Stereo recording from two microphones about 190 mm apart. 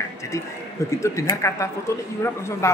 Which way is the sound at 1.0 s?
15° left (ahead or behind).